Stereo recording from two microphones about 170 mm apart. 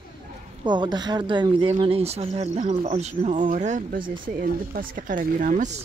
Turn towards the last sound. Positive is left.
turn(degrees=-45)  # may be behind; listen again after turning